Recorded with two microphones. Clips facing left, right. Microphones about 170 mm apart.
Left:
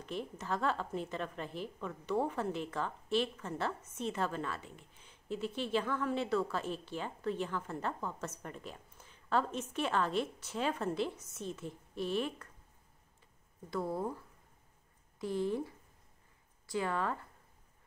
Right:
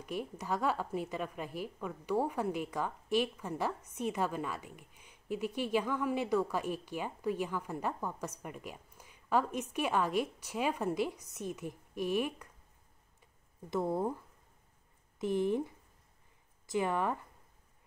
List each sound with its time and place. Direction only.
0.0 s a woman's voice: 10° right (ahead or behind)
13.7 s speech: 20° right (ahead or behind)
15.1 s speech: 20° right (ahead or behind)
16.7 s a woman's voice: 15° right (ahead or behind)